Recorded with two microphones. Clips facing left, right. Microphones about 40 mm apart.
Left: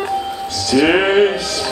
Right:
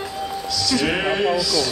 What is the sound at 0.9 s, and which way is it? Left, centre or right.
Music, left.